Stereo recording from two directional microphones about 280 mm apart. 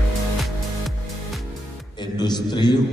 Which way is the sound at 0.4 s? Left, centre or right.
Centre.